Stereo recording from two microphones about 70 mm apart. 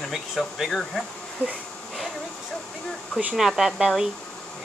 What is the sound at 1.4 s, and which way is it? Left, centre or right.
Speech, right.